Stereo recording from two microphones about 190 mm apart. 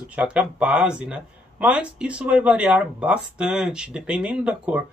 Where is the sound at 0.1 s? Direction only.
5° right (ahead or behind).